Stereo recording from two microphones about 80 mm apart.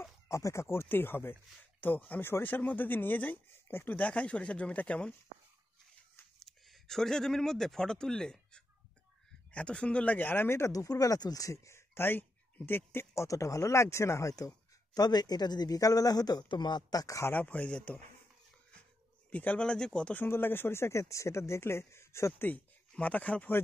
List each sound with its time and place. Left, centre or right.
0.3 s speech: left; by 5.1 s centre
6.4 s speech: centre; by 10.7 s left
10.7 s speech: left
15.0 s speech: left
17.3 s speech: centre
19.3 s speech: centre
20.2 s speech: left
22.5 s speech: centre